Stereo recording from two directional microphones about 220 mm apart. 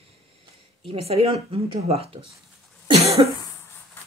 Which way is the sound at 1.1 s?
25° right (ahead or behind).